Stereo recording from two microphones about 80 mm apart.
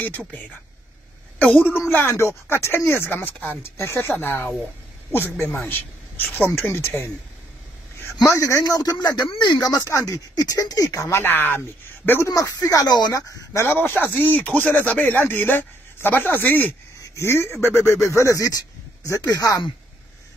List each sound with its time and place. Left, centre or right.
1.4 s speech: left
3.7 s speech: left
8.3 s speech: left
9.8 s speech: left
12.3 s speech: left
13.1 s speech: left
13.7 s speech: left